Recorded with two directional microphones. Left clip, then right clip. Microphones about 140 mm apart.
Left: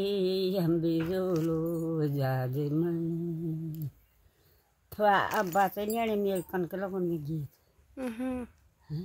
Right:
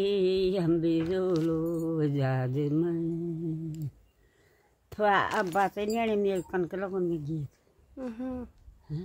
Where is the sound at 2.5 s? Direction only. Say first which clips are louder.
Right 3 dB; 10° right (ahead or behind).